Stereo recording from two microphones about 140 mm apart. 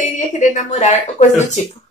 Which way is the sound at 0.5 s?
55° left (ahead or behind).